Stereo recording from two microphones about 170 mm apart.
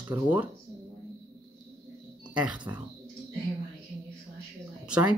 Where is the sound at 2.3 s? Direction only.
5° right (ahead or behind).